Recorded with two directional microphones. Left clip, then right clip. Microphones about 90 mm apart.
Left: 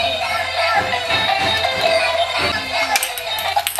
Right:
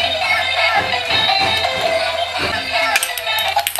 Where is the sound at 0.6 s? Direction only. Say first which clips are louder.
Right 1 dB; 5° right (ahead or behind).